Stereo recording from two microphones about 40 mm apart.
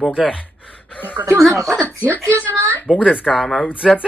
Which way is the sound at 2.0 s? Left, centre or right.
Right.